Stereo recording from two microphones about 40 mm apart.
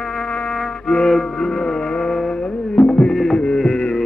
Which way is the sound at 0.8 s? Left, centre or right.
Centre.